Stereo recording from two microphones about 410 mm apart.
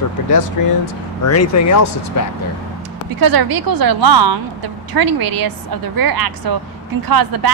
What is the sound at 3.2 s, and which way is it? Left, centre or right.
A woman's voice, right.